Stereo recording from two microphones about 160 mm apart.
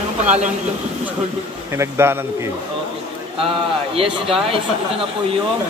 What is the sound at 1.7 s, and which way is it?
Speech, 15° right (ahead or behind).